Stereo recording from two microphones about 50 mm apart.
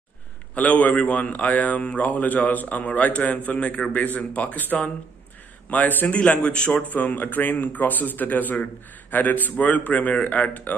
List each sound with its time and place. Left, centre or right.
0.6 s a man's voice: left
6.9 s a man's voice: left